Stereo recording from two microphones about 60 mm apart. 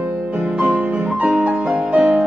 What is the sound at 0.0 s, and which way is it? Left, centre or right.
Music, centre.